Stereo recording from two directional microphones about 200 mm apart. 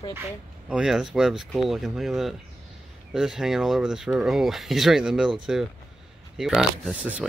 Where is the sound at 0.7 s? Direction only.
5° right (ahead or behind).